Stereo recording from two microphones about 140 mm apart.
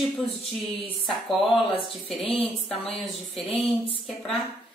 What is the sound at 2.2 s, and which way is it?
Speech, 45° left (ahead or behind).